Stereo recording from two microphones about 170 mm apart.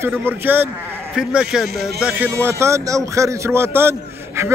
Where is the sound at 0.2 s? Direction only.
10° right (ahead or behind).